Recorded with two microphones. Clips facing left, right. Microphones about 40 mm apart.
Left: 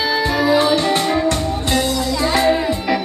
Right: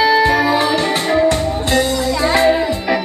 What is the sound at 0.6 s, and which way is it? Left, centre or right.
Music, centre.